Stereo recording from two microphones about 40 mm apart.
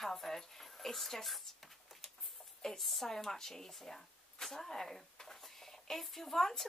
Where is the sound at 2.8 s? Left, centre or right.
Centre.